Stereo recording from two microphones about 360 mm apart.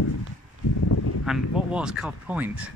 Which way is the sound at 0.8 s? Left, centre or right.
Left.